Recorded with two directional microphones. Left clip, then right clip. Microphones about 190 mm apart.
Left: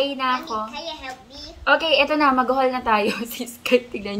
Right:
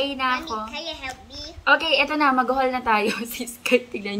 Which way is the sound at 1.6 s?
10° right (ahead or behind).